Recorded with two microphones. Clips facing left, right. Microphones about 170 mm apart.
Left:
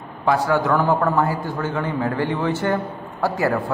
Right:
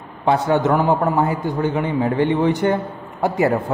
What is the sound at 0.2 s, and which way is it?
A man's voice, 20° right (ahead or behind).